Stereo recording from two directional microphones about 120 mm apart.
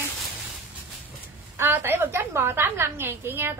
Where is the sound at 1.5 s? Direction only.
20° right (ahead or behind).